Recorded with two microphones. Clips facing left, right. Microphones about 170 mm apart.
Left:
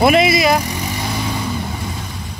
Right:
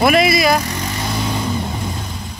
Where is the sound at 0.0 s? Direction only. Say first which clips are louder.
Left 1 dB; 20° left (ahead or behind); by 1.5 s 5° left (ahead or behind).